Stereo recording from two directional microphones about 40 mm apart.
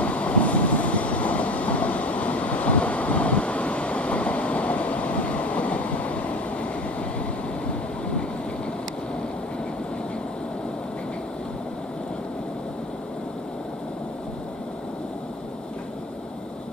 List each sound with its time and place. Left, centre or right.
0.0 s train: left